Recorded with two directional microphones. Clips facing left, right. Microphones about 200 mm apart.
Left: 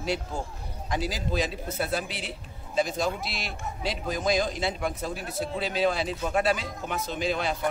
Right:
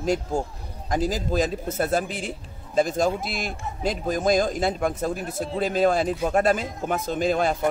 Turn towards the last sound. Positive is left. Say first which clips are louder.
# right 6 dB
turn(degrees=-45)  # may be behind; listen again after turning